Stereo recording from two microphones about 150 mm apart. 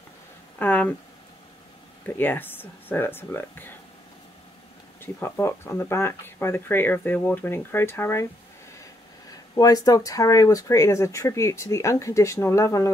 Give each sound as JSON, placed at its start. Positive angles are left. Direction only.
{"t": 0.6, "sound": "speech", "side_deg": 10}
{"t": 2.1, "sound": "speech", "side_deg": 15}
{"t": 5.0, "sound": "speech", "side_deg": 15}
{"t": 9.3, "sound": "speech", "side_deg": 25}